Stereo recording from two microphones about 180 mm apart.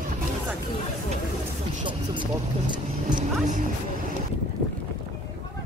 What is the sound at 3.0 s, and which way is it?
Vehicle, 45° right (ahead or behind).